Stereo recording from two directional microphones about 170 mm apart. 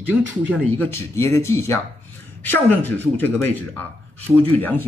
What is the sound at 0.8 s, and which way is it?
Speech, 15° left (ahead or behind).